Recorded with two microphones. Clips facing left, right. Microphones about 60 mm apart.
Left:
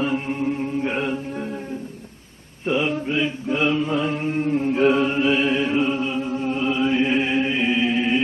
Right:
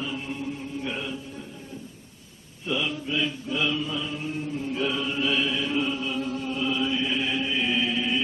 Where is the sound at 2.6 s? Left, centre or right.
Left.